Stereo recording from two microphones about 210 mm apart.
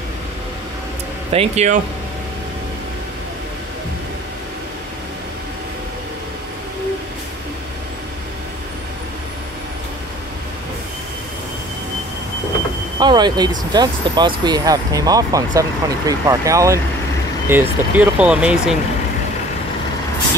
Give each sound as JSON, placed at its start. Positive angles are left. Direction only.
{"t": 1.3, "sound": "speech", "side_deg": -30}
{"t": 13.0, "sound": "speech", "side_deg": -20}